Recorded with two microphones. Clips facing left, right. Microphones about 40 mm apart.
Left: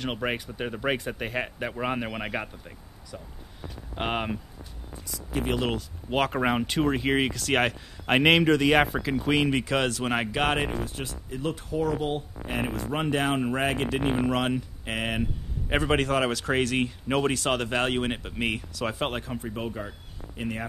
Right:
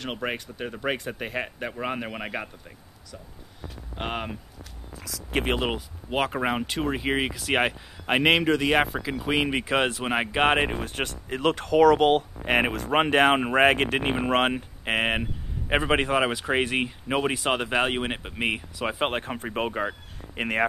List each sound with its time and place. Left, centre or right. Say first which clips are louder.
0.0 s speech: left 1 dB; centre
5.3 s speech: right 3 dB; right
5.6 s speech: even; right
6.0 s speech: left 1 dB; centre; by 10.8 s right
10.8 s speech: right 4 dB; right
15.7 s speech: right 2 dB; right
19.1 s speech: right 4 dB; right